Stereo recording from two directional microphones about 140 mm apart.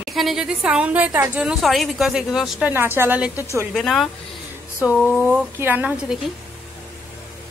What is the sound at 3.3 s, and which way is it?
Speech, 20° left (ahead or behind).